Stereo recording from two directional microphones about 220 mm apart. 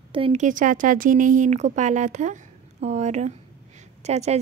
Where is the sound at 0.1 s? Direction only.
25° right (ahead or behind).